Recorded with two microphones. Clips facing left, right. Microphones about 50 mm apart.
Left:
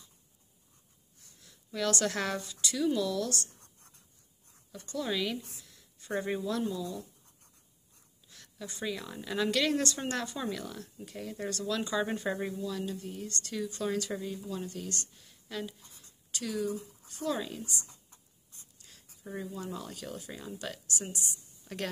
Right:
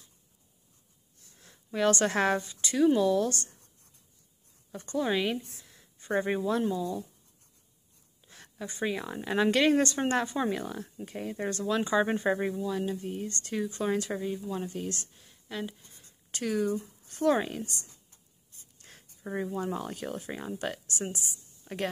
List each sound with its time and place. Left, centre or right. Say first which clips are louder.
1.4 s speech: right 6 dB; right
3.6 s writing: left 3 dB; left
4.7 s speech: right 5 dB; right
8.3 s a sound: right 4 dB; right
8.8 s speech: right 5 dB; right; by 15.7 s centre
16.3 s a sound: right 5 dB; right
16.5 s speech: right 4 dB; right
18.8 s a sound: right 7 dB; right
19.2 s speech: right 7 dB; right
21.6 s a woman's voice: right 4 dB; centre